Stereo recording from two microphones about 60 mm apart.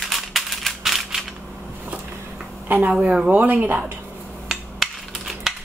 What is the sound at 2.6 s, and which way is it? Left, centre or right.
Speech, right.